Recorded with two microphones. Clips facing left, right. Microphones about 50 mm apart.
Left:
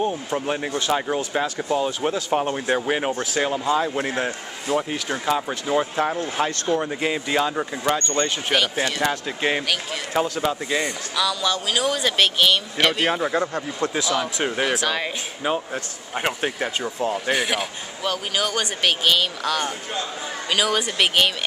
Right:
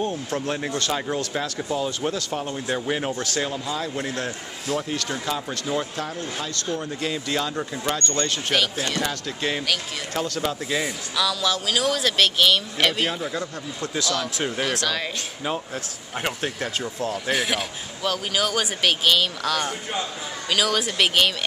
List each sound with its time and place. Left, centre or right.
0.0 s a man's voice: centre
2.3 s speech: left
4.6 s a man's voice: centre
10.1 s a man's voice: centre
13.1 s speech: left
13.9 s a man's voice: centre
17.3 s a man's voice: centre